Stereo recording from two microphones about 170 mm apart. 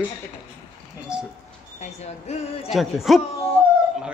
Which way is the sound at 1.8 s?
40° left (ahead or behind).